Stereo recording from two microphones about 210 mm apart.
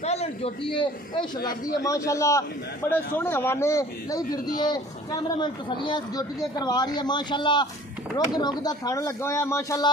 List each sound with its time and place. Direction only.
0.0 s a man's voice: 30° left (ahead or behind); by 9.8 s 15° left (ahead or behind)